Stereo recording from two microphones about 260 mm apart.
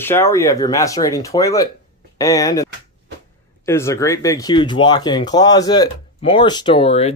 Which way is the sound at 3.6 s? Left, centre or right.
Centre.